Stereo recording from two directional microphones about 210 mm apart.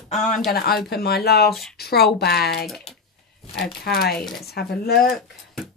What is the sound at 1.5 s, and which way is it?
Speech, centre (ahead or behind).